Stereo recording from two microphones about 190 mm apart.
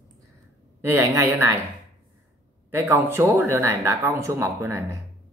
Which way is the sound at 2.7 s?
10° right (ahead or behind).